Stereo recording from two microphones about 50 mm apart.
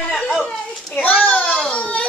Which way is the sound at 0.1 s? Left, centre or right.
Centre.